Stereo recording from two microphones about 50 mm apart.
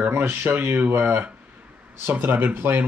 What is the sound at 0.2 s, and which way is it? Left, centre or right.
Speech, right.